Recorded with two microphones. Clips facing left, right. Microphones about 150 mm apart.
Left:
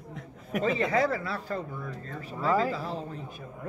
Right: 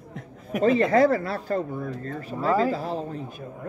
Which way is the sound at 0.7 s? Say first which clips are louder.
Right 9 dB; 50° right (ahead or behind).